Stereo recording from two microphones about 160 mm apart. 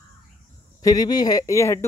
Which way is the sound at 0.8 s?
25° left (ahead or behind).